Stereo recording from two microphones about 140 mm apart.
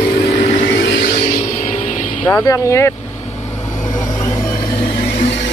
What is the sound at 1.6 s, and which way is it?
Vehicle, 60° left (ahead or behind).